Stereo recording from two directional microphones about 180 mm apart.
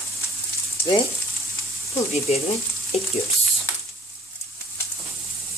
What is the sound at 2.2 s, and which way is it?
Speech, 35° left (ahead or behind).